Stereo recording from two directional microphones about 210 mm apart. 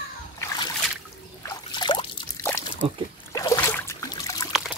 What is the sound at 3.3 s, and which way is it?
Trickle, 15° left (ahead or behind).